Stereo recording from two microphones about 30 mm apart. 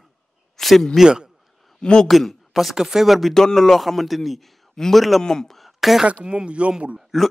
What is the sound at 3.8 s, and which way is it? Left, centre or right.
A man's voice, centre.